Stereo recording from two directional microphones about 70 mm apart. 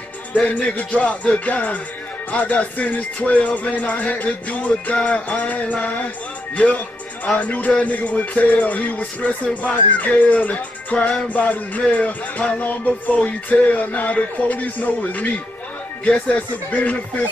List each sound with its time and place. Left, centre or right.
0.4 s music: centre
6.5 s speech: centre
7.3 s music: left